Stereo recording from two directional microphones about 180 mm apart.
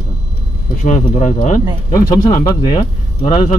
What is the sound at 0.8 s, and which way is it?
Speech, 40° left (ahead or behind).